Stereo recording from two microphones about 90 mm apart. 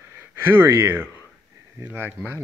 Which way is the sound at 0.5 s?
30° right (ahead or behind).